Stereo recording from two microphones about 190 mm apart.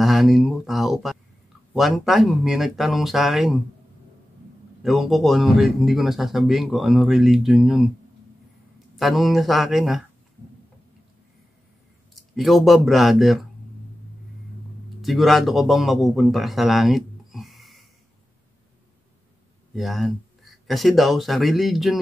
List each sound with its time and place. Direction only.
0.0 s a sound: centre (ahead or behind)
1.7 s a man's voice: centre (ahead or behind)
4.8 s a man's voice: centre (ahead or behind)
8.9 s a man's voice: centre (ahead or behind)
12.2 s a man's voice: centre (ahead or behind)
15.0 s speech: centre (ahead or behind)
19.7 s speech: centre (ahead or behind)